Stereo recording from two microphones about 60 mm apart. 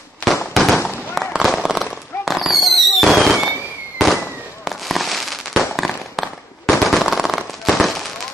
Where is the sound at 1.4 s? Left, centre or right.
Centre.